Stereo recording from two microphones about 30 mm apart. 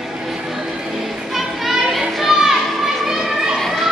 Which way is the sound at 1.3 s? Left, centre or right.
Centre.